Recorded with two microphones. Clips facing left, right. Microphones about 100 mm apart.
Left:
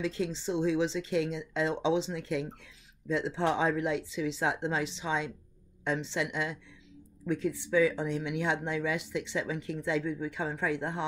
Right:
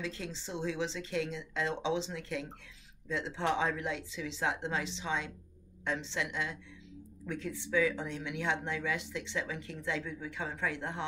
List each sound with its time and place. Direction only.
0.0 s speech: 10° left (ahead or behind)